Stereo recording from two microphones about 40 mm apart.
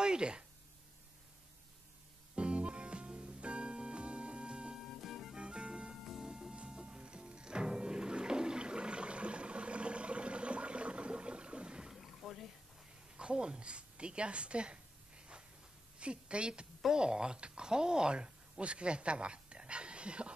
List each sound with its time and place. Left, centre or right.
0.0 s a sound: right
2.3 s music: right
4.8 s music: centre
5.3 s music: right
11.9 s boat: centre
13.1 s a sound: right
16.0 s a woman's voice: right